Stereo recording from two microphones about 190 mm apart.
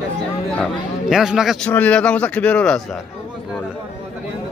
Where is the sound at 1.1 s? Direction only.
Centre (ahead or behind).